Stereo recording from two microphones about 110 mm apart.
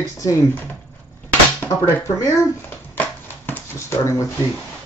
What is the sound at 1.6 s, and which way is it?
Speech, 15° left (ahead or behind).